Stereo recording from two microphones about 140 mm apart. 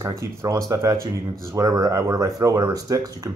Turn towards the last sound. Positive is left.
turn(degrees=-25)  # may be behind; listen again after turning